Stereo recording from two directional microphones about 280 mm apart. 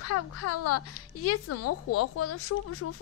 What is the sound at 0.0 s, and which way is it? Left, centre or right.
Speech, left.